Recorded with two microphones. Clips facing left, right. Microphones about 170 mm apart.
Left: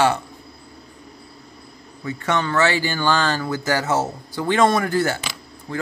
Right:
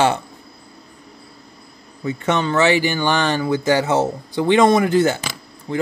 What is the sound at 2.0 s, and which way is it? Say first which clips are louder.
Speech: right 3 dB; 20° right (ahead or behind).